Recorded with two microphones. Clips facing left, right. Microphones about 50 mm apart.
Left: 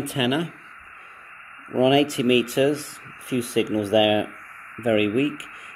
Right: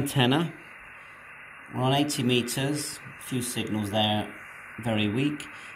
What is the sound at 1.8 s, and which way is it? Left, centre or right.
Speech, left.